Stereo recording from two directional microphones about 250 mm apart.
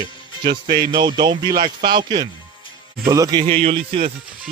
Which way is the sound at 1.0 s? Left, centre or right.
Centre.